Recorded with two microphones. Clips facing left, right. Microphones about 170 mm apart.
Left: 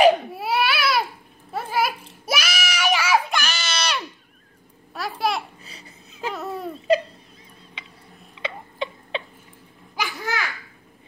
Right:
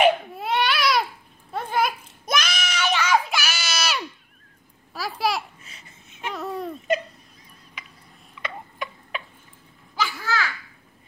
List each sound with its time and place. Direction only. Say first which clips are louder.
0.3 s baby cry: left 1 dB; 10° left (ahead or behind)
1.5 s a sound: even; 5° left (ahead or behind)
3.3 s child singing: left 1 dB; 5° right (ahead or behind)
4.9 s babbling: even; centre (ahead or behind)
5.6 s laughter: left 4 dB; 35° left (ahead or behind)
6.3 s a sound: right 3 dB; centre (ahead or behind)
8.4 s cat: left 4 dB; 25° left (ahead or behind)
9.9 s babbling: right 1 dB; 15° left (ahead or behind)